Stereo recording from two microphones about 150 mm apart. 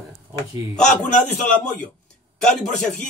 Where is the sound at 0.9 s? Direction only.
5° left (ahead or behind).